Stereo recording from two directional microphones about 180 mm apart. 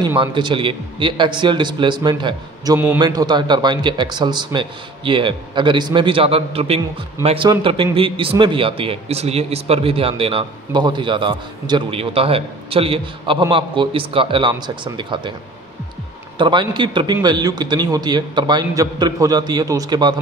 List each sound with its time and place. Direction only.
0.2 s a man's voice: 25° right (ahead or behind)
16.3 s a man's voice: 25° right (ahead or behind)